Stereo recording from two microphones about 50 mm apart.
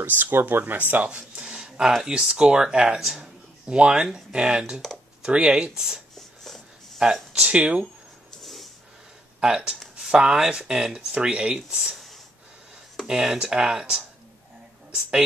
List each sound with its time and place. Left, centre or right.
0.0 s speech: right; by 6.0 s centre
6.1 s a sound: centre
7.3 s speech: right
8.3 s dog: centre
9.4 s speech: centre
11.7 s speech: centre
13.0 s speech: centre